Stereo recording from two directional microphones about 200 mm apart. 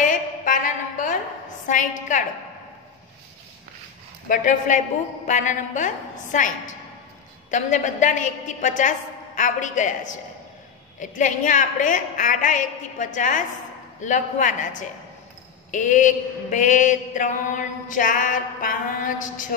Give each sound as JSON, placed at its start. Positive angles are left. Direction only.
{"t": 0.0, "sound": "a sound", "side_deg": 40}
{"t": 1.7, "sound": "mantra", "side_deg": 40}
{"t": 4.3, "sound": "mantra", "side_deg": 40}
{"t": 11.0, "sound": "mantra", "side_deg": 40}